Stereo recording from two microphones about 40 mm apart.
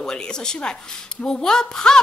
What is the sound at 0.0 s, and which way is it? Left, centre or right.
A woman's voice, centre.